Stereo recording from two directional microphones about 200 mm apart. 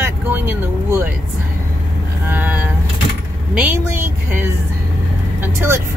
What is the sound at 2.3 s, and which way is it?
Speech, 10° right (ahead or behind).